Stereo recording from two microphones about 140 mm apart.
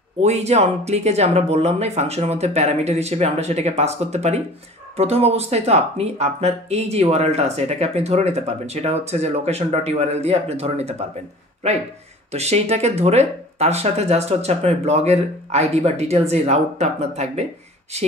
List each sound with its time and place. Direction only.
0.2 s speech: 50° right (ahead or behind)
12.3 s speech: 50° right (ahead or behind)